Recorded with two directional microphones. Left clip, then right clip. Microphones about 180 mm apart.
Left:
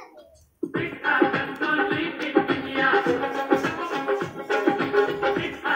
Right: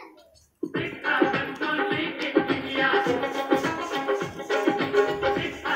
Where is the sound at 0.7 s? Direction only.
25° left (ahead or behind).